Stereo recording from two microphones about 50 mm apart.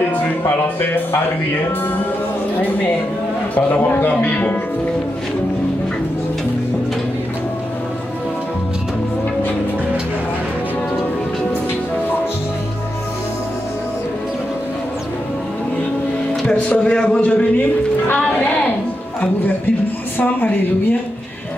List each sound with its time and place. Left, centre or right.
0.9 s speech: left
3.5 s a man's voice: left
16.4 s a man's voice: left
20.2 s a woman's voice: left